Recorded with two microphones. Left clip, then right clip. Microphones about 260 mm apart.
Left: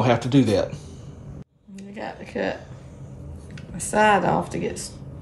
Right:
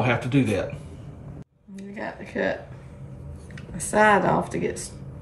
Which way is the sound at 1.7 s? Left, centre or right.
Centre.